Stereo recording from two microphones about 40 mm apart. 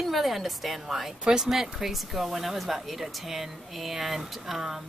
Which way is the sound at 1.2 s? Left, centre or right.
Centre.